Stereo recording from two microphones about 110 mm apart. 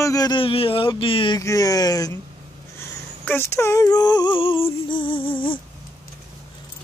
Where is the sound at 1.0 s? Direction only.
55° left (ahead or behind).